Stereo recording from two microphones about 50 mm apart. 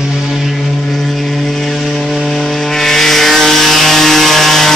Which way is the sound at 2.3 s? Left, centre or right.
Centre.